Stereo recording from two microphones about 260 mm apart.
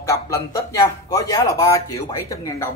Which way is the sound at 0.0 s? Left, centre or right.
Centre.